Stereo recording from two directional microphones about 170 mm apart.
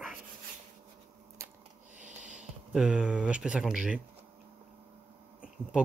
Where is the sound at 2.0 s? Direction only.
45° right (ahead or behind).